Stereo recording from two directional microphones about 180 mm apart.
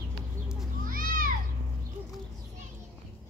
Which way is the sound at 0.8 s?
50° right (ahead or behind).